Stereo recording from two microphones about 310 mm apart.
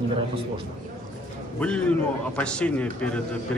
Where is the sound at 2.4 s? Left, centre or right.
Centre.